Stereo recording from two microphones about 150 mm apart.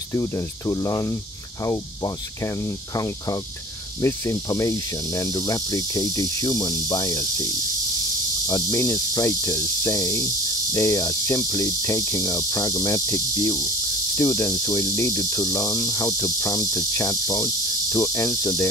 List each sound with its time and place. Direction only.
0.1 s cricket: 20° left (ahead or behind)
4.0 s cricket: 20° left (ahead or behind)
8.5 s cricket: 25° left (ahead or behind)